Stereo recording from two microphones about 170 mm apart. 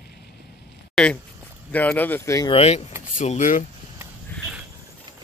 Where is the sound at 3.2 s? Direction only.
50° left (ahead or behind).